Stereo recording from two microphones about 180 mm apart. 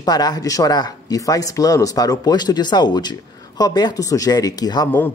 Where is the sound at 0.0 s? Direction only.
20° left (ahead or behind).